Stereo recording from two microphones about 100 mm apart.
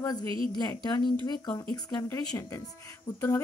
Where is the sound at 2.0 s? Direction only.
25° left (ahead or behind).